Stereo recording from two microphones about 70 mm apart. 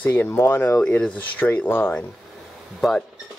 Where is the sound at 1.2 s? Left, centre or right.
Left.